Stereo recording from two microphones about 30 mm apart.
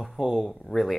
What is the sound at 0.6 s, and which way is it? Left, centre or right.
Speech, centre.